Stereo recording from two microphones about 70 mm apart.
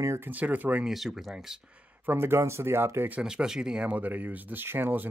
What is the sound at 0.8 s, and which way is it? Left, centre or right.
Speech, centre.